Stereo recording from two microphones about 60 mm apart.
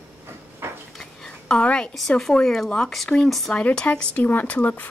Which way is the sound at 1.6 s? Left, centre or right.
Centre.